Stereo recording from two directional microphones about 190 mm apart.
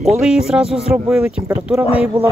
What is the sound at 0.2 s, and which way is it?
Speech, 5° right (ahead or behind).